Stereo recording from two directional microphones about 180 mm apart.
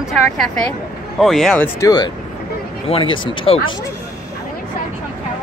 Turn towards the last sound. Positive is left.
turn(degrees=30)  # may be behind; listen again after turning